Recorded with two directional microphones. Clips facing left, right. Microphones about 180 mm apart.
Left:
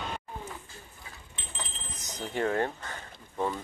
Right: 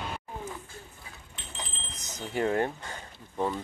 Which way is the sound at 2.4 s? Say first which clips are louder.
Right 1 dB; 25° right (ahead or behind).